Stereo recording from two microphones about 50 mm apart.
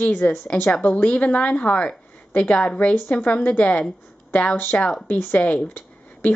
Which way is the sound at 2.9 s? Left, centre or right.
Left.